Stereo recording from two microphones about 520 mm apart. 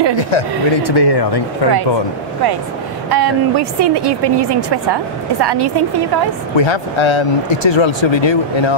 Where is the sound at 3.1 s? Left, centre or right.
Right.